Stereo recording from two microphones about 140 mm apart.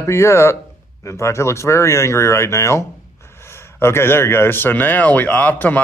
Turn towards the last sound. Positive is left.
turn(degrees=10)  # may be behind; listen again after turning